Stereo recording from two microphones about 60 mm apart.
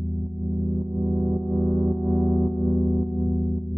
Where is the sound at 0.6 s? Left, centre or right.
Centre.